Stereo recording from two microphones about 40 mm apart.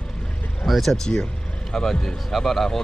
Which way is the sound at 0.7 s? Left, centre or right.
Centre.